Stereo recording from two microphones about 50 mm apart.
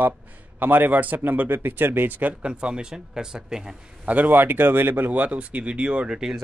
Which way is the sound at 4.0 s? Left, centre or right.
Right.